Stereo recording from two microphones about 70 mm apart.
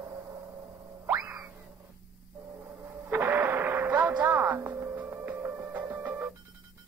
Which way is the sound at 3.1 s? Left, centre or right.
Right.